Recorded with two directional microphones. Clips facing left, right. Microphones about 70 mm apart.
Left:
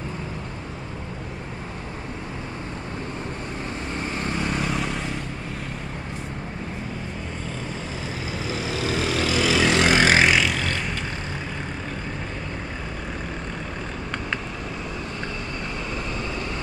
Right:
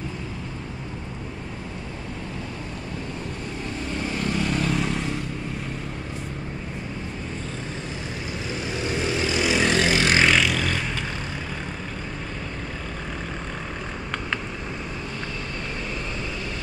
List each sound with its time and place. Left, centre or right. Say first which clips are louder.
4.2 s vehicle: right 2 dB; centre
8.8 s vehicle: left 1 dB; left
10.0 s vehicle: left 1 dB; centre